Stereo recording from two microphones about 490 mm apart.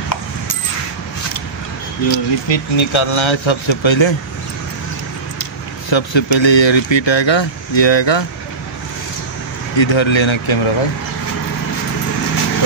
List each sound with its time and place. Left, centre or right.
2.0 s speech: left
5.9 s speech: left
9.8 s speech: left